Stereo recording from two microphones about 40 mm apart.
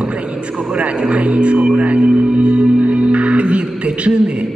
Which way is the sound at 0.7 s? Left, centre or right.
Right.